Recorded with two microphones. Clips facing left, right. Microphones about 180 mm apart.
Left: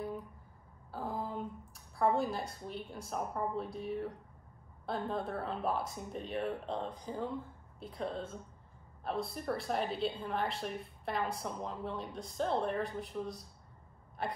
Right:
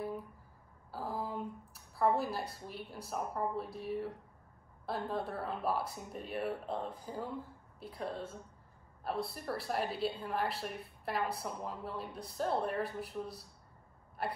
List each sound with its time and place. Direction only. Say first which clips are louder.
0.9 s a woman's voice: even; centre (ahead or behind)